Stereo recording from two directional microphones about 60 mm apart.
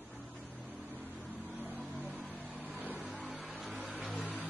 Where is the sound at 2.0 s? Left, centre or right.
Right.